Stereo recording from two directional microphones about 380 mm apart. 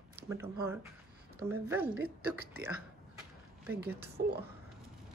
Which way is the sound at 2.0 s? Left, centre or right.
Right.